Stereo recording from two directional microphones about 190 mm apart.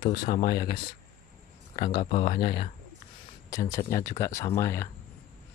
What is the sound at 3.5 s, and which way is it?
Speech, 15° left (ahead or behind).